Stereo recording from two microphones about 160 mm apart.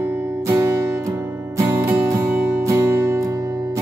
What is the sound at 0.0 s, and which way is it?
Music, 20° right (ahead or behind).